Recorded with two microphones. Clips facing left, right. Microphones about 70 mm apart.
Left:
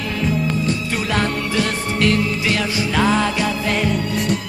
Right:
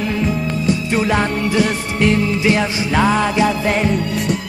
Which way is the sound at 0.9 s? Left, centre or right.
Right.